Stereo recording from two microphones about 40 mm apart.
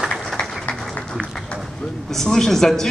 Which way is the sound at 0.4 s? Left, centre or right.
Left.